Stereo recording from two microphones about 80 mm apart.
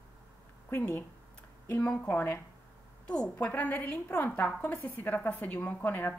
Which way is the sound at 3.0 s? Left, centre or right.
Centre.